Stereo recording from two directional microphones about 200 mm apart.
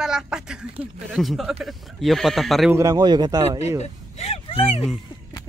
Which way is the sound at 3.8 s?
30° left (ahead or behind).